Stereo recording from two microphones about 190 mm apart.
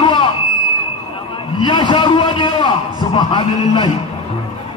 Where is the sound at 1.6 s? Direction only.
25° left (ahead or behind).